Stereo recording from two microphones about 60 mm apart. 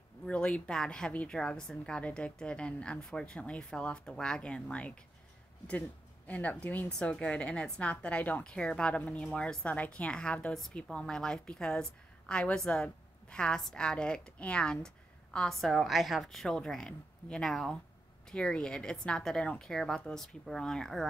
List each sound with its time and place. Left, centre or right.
0.3 s a woman's voice: centre
6.9 s a woman's voice: centre
8.5 s a woman's voice: centre
15.5 s a woman's voice: centre